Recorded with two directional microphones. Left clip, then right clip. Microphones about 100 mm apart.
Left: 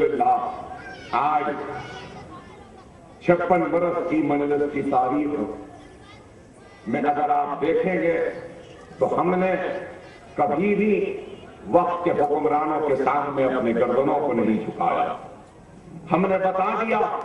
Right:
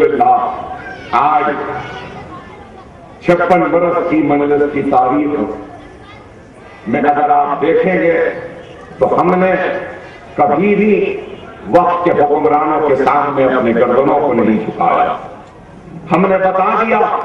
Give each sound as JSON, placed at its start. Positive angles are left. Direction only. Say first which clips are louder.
{"t": 0.0, "sound": "a sound", "louder": "right 10 dB", "side_deg": -20}
{"t": 3.5, "sound": "a man's voice", "louder": "right 10 dB", "side_deg": -25}
{"t": 6.9, "sound": "a man's voice", "louder": "right 10 dB", "side_deg": -20}